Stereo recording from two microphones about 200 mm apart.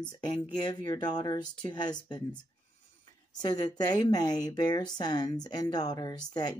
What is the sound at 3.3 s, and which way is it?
A woman's voice, 20° left (ahead or behind).